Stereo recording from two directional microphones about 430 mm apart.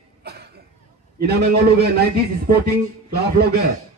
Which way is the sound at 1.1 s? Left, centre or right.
Right.